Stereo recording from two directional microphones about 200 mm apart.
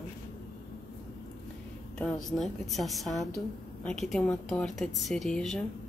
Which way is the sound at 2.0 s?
5° left (ahead or behind).